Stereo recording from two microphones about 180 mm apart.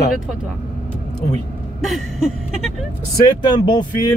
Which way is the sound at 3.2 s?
25° left (ahead or behind).